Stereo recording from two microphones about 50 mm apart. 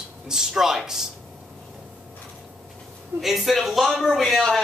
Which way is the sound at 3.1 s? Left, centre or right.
Centre.